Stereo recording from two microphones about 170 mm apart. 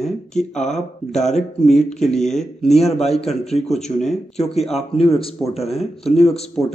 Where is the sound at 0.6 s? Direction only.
45° left (ahead or behind).